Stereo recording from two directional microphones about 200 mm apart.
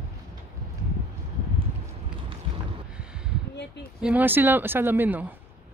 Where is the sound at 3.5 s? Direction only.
55° left (ahead or behind).